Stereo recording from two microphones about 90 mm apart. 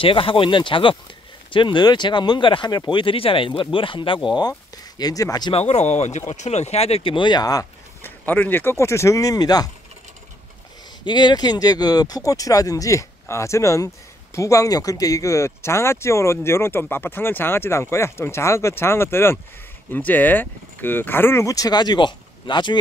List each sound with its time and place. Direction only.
0.0 s speech: 80° left
4.4 s speech: 50° left (ahead or behind)
6.8 s speech: 85° left; by 7.6 s 50° left (ahead or behind)
8.0 s speech: 20° left (ahead or behind); by 9.7 s 45° left (ahead or behind)
11.1 s speech: 55° left (ahead or behind)